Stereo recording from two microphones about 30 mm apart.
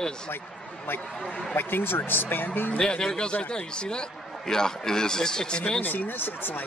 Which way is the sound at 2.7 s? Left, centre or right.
Left.